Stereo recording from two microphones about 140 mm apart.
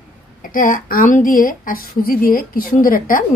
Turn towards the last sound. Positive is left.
turn(degrees=85)